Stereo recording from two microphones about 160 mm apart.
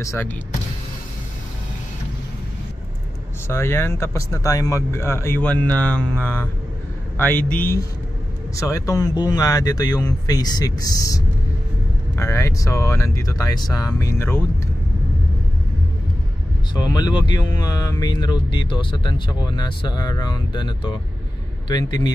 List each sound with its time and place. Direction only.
0.0 s speech: 20° left (ahead or behind)
3.4 s speech: 15° left (ahead or behind)
12.2 s speech: 20° left (ahead or behind)
16.9 s speech: 25° left (ahead or behind)